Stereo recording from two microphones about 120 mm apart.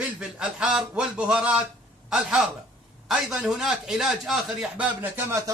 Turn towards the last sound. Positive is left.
turn(degrees=-15)  # may be behind; listen again after turning